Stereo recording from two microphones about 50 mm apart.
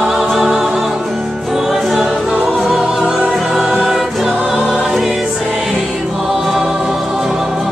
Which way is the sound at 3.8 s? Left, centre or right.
Centre.